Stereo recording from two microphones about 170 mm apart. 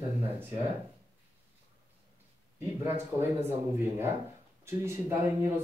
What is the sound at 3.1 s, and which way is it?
Speech, 15° right (ahead or behind).